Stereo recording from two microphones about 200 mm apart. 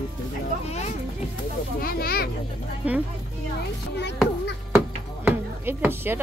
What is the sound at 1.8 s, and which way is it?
Speech, 50° left (ahead or behind).